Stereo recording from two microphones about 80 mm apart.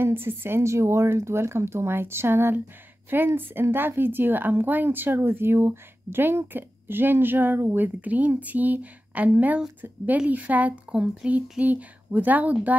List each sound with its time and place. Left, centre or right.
0.0 s speech: right